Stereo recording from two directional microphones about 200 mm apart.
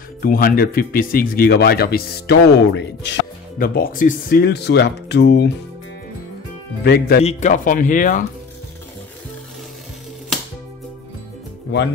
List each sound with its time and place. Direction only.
0.2 s speech: 45° left (ahead or behind)
6.8 s speech: 55° left (ahead or behind)
7.2 s speech: 35° left (ahead or behind)